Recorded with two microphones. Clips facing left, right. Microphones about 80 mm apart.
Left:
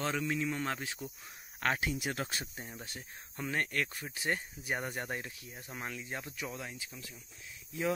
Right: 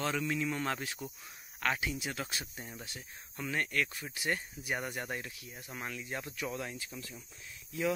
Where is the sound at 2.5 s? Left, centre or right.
Left.